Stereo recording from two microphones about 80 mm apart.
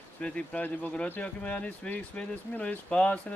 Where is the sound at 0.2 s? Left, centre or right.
Centre.